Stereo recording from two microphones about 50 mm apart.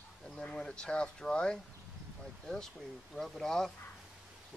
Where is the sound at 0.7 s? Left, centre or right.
Centre.